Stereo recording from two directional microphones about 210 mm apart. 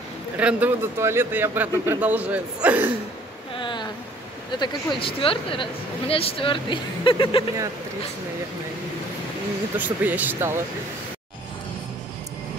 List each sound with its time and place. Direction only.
0.4 s speech: 5° right (ahead or behind)
3.5 s a sound: 20° left (ahead or behind)
4.6 s a woman's voice: 25° left (ahead or behind)
9.8 s speech: 10° right (ahead or behind)